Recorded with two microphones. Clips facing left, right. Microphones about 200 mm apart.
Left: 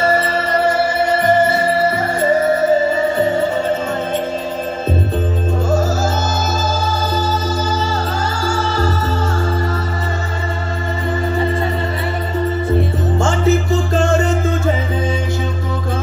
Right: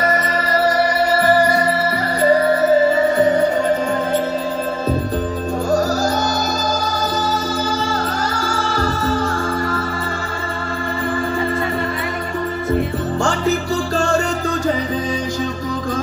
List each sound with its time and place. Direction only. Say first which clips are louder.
0.0 s music: left 3 dB; 25° left (ahead or behind)
8.5 s music: left 4 dB; 25° left (ahead or behind)
13.2 s music: left 4 dB; 20° left (ahead or behind)